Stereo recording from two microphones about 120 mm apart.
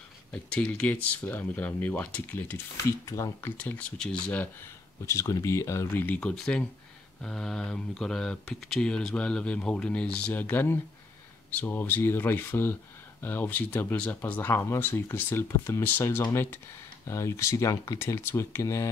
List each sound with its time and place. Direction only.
0.3 s speech: 10° left (ahead or behind)
5.0 s speech: 25° left (ahead or behind)